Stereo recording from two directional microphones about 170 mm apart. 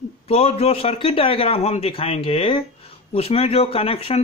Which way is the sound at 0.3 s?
35° left (ahead or behind).